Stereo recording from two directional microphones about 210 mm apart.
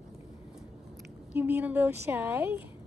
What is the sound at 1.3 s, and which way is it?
A woman's voice, 10° right (ahead or behind).